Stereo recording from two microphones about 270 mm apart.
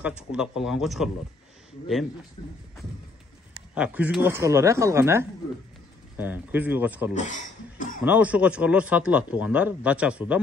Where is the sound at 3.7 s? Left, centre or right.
Centre.